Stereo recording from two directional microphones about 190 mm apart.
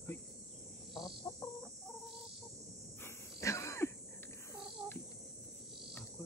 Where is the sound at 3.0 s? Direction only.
15° left (ahead or behind).